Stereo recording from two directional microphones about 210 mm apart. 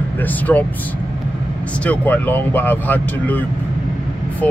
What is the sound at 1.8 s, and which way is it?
Speech, 10° left (ahead or behind).